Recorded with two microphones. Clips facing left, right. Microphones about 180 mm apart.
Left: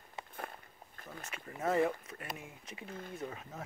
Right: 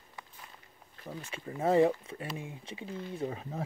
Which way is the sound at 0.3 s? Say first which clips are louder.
Left 8 dB; 55° left (ahead or behind).